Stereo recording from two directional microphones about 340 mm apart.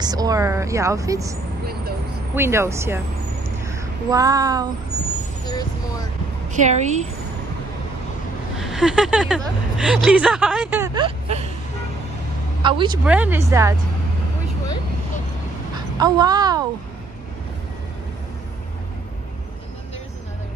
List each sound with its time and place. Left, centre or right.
0.0 s a woman's voice: centre
3.4 s a sound: centre
5.5 s speech: centre
6.5 s a woman's voice: right
8.5 s speech: centre
12.6 s a woman's voice: centre
15.7 s a woman's voice: centre